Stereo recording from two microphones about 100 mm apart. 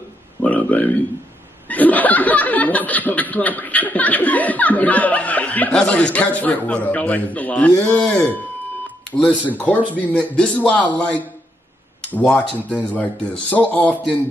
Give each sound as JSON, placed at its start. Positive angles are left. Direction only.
{"t": 0.4, "sound": "a sound", "side_deg": 15}
{"t": 1.7, "sound": "speech", "side_deg": 15}
{"t": 9.7, "sound": "speech", "side_deg": 15}